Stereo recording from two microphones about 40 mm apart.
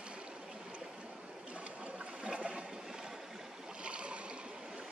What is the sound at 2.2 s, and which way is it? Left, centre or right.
Water, right.